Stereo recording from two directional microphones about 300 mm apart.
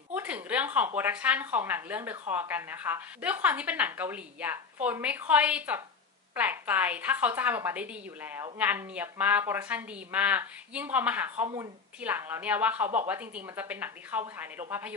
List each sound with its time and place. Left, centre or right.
0.1 s a woman's voice: centre